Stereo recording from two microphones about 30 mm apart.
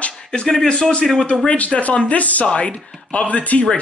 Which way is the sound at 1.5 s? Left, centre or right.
Left.